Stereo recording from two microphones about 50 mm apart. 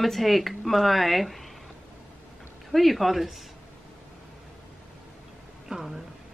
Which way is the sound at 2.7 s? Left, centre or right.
Centre.